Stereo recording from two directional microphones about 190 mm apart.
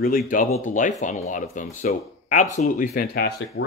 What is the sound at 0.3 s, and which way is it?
Speech, 45° left (ahead or behind).